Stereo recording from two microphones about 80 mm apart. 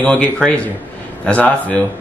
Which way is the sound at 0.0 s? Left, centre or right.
Centre.